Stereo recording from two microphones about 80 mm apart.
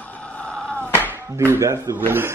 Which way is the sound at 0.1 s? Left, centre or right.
Centre.